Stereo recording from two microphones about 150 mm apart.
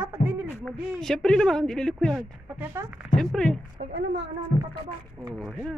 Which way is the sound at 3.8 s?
50° right (ahead or behind).